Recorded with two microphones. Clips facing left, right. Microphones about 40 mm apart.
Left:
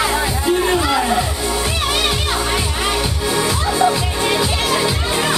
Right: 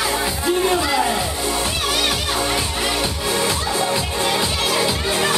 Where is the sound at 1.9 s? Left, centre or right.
Centre.